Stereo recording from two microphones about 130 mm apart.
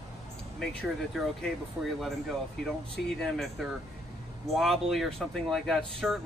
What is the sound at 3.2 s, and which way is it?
Speech, 5° left (ahead or behind).